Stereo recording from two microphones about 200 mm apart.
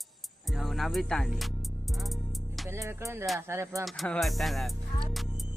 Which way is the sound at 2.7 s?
15° right (ahead or behind).